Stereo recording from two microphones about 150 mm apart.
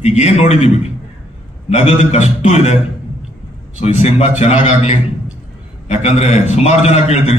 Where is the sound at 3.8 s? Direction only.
45° left (ahead or behind).